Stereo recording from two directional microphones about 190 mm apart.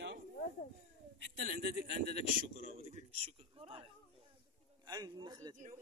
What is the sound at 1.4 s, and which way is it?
A man's voice, 45° right (ahead or behind).